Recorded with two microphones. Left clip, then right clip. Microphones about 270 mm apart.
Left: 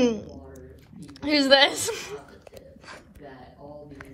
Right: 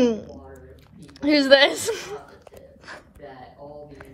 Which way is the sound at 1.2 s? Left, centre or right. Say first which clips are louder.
Right 3 dB; centre.